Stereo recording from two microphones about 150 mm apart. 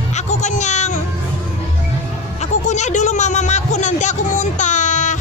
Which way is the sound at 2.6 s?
50° left (ahead or behind).